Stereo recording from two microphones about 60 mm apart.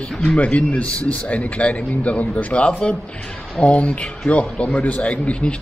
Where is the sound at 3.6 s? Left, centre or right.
Centre.